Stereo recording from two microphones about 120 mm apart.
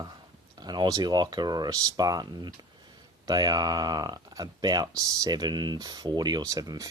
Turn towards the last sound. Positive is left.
turn(degrees=-30)  # may be behind; listen again after turning